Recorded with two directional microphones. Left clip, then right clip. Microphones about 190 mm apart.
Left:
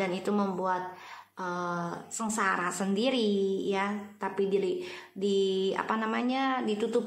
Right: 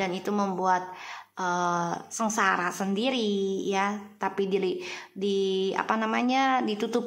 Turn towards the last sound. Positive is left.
turn(degrees=-20)  # may be behind; listen again after turning